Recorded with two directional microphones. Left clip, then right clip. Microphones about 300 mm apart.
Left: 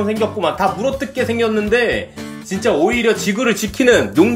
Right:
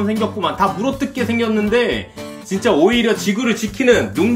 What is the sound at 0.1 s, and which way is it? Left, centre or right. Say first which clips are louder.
Speech: left 2 dB; centre.